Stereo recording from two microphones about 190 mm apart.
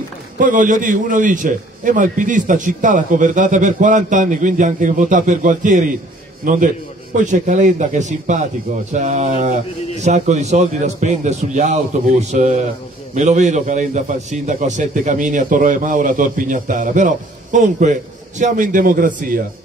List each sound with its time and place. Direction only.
0.4 s a man's voice: 45° right (ahead or behind)